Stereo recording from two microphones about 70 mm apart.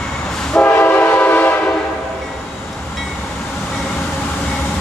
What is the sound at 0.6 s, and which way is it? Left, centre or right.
Train, left.